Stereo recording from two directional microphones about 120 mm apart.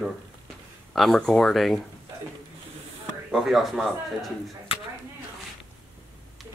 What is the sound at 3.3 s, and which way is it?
Speech, centre (ahead or behind).